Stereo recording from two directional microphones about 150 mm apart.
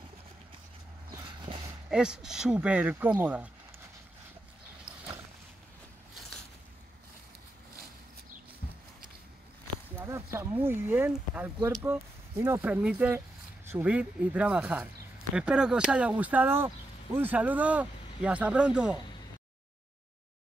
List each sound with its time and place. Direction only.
1.5 s a sound: 40° right (ahead or behind)
1.9 s speech: 5° right (ahead or behind)
9.9 s speech: 15° right (ahead or behind)